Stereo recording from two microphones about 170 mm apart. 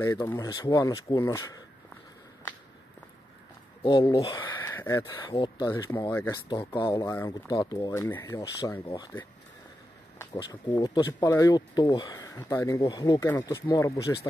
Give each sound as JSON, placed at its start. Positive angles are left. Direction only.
{"t": 0.0, "sound": "speech", "side_deg": 20}
{"t": 3.8, "sound": "speech", "side_deg": 25}
{"t": 4.6, "sound": "speech", "side_deg": 15}
{"t": 6.5, "sound": "speech", "side_deg": 30}
{"t": 10.1, "sound": "speech", "side_deg": 20}